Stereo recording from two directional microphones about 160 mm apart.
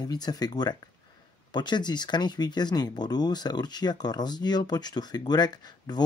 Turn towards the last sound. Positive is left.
turn(degrees=25)  # may be behind; listen again after turning